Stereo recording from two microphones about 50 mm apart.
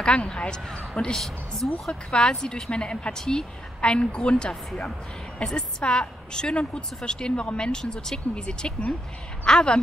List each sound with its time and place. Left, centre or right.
0.0 s speech: centre
1.1 s a woman's voice: centre